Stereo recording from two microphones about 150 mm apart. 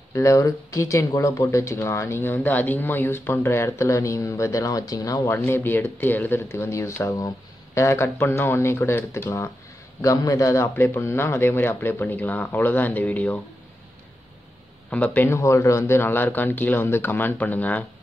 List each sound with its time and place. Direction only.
0.1 s speech: 20° left (ahead or behind)
14.9 s speech: 10° left (ahead or behind)